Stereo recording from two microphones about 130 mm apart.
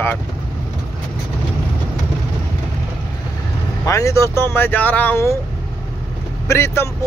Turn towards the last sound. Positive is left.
turn(degrees=20)  # may be behind; listen again after turning